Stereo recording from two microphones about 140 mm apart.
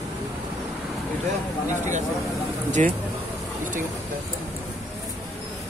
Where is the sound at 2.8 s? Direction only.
50° right (ahead or behind).